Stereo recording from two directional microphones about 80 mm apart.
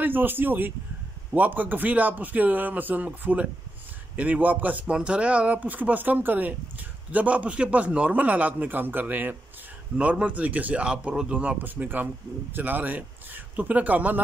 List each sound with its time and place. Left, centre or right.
0.0 s a man's voice: right